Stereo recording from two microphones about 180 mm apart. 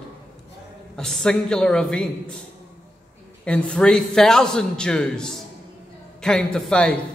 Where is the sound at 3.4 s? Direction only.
5° left (ahead or behind).